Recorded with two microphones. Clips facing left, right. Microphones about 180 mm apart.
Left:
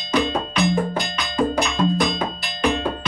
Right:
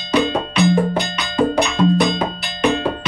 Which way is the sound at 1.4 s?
30° right (ahead or behind).